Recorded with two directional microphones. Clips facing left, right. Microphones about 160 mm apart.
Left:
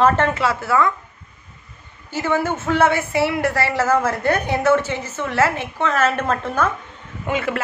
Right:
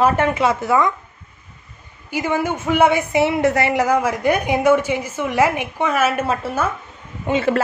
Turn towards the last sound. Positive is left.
turn(degrees=-30)  # may be behind; listen again after turning